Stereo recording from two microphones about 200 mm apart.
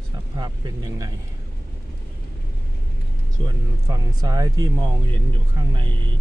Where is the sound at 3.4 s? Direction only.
20° right (ahead or behind).